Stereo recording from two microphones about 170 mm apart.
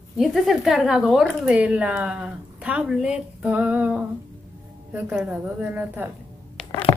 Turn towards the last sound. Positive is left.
turn(degrees=5)  # may be behind; listen again after turning